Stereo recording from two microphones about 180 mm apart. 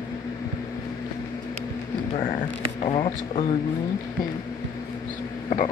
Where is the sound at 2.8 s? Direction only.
35° left (ahead or behind).